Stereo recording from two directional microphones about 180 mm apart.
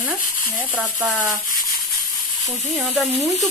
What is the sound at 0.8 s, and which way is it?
Speech, 5° right (ahead or behind).